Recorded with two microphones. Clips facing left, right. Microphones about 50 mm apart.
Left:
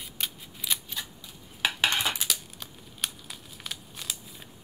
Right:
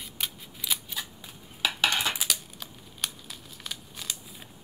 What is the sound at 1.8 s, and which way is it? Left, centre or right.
Cutlery, left.